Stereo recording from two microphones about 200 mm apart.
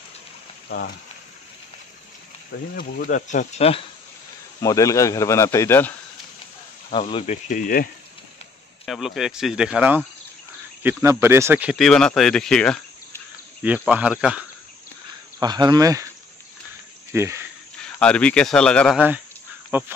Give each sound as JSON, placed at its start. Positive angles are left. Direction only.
{"t": 0.7, "sound": "speech", "side_deg": 55}
{"t": 2.7, "sound": "speech", "side_deg": 45}
{"t": 4.6, "sound": "speech", "side_deg": 15}
{"t": 6.9, "sound": "speech", "side_deg": 25}
{"t": 7.4, "sound": "speech", "side_deg": 40}
{"t": 8.8, "sound": "speech", "side_deg": 0}
{"t": 13.8, "sound": "speech", "side_deg": -5}
{"t": 15.3, "sound": "insect", "side_deg": -20}
{"t": 17.1, "sound": "speech", "side_deg": -15}
{"t": 17.9, "sound": "speech", "side_deg": 5}
{"t": 18.9, "sound": "speech", "side_deg": -5}